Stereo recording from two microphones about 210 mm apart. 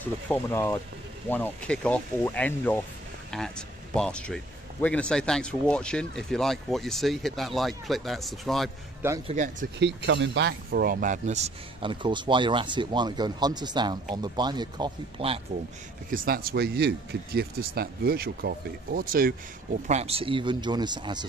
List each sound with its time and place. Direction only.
0.0 s speech: 10° left (ahead or behind)
9.3 s speech: 35° right (ahead or behind)
9.8 s speech: 60° right (ahead or behind); by 15.4 s 25° right (ahead or behind)
16.1 s speech: 40° right (ahead or behind)
19.9 s speech: 30° right (ahead or behind)